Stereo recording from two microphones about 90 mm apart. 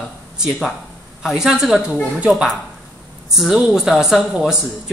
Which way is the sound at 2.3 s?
Centre (ahead or behind).